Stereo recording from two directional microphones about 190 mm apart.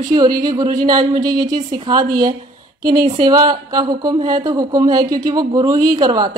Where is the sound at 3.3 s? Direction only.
20° right (ahead or behind).